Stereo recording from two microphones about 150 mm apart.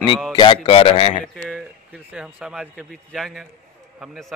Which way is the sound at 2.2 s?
5° right (ahead or behind).